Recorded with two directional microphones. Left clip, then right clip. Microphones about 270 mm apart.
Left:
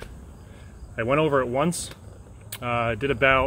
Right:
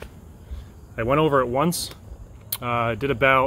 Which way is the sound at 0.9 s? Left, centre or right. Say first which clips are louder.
Right 2 dB; centre.